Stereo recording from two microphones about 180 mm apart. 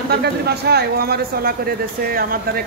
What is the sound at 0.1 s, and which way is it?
Speech, 65° right (ahead or behind).